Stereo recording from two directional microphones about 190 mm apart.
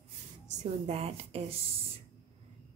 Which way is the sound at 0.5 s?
35° right (ahead or behind).